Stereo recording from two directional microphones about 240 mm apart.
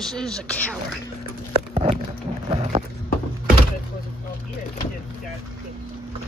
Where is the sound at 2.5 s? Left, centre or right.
Right.